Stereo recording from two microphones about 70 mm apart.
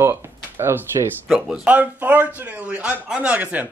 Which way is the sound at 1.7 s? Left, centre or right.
Right.